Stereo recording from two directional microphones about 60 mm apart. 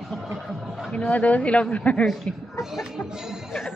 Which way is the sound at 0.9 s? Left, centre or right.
Left.